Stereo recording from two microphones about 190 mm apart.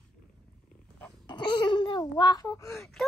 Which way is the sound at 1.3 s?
25° left (ahead or behind).